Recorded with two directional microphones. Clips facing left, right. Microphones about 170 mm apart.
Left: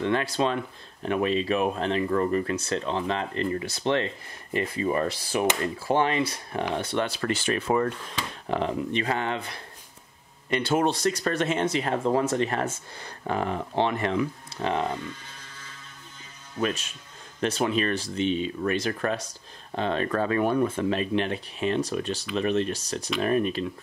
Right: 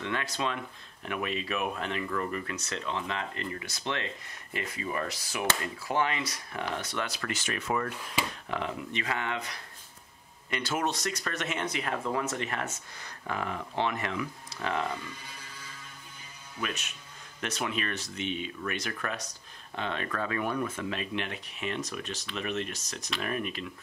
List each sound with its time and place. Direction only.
0.0 s speech: 35° left (ahead or behind)
16.5 s speech: 35° left (ahead or behind)